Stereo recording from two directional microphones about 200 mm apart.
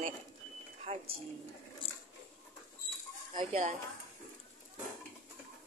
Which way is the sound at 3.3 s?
25° right (ahead or behind).